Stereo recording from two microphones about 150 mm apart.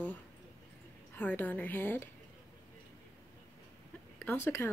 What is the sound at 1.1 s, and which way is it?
Speech, 10° left (ahead or behind).